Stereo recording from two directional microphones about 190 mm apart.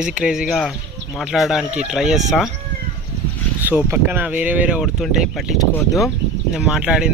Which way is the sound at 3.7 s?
10° right (ahead or behind).